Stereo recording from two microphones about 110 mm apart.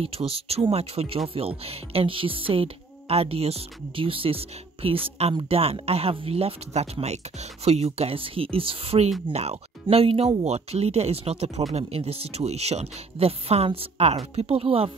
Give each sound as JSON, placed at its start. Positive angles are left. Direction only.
{"t": 0.0, "sound": "speech", "side_deg": -60}
{"t": 10.4, "sound": "speech", "side_deg": -75}